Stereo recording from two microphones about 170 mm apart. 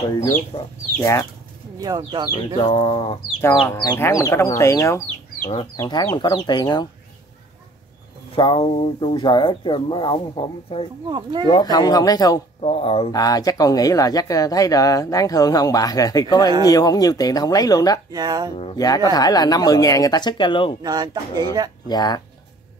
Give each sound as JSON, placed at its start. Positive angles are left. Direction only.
{"t": 0.1, "sound": "speech", "side_deg": 20}
{"t": 1.8, "sound": "speech", "side_deg": -20}
{"t": 2.6, "sound": "a sound", "side_deg": 30}
{"t": 3.7, "sound": "speech", "side_deg": 25}
{"t": 8.4, "sound": "speech", "side_deg": 30}
{"t": 11.1, "sound": "speech", "side_deg": -25}
{"t": 11.4, "sound": "speech", "side_deg": 25}
{"t": 12.6, "sound": "a sound", "side_deg": 35}
{"t": 13.1, "sound": "speech", "side_deg": 20}
{"t": 18.1, "sound": "speech", "side_deg": -25}
{"t": 18.8, "sound": "speech", "side_deg": 20}
{"t": 20.8, "sound": "speech", "side_deg": -25}
{"t": 21.8, "sound": "speech", "side_deg": 25}